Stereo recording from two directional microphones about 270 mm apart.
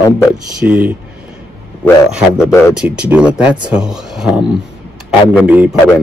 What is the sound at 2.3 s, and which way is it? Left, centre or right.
Speech, centre.